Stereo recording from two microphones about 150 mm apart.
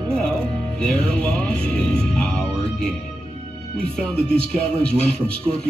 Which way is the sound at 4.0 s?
5° left (ahead or behind).